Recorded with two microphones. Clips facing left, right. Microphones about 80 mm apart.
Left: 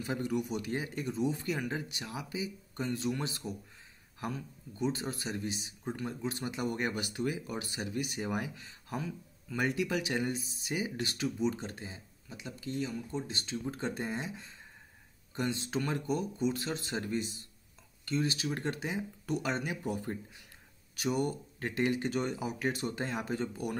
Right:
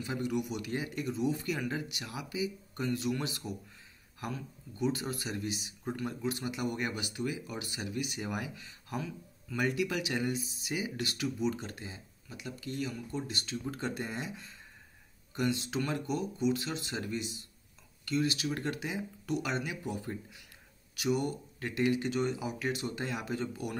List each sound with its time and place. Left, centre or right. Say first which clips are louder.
0.0 s speech: even; left